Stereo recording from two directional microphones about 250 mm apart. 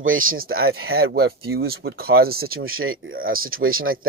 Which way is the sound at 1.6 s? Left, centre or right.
Right.